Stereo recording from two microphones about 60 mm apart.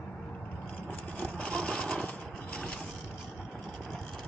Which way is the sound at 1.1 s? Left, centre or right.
Left.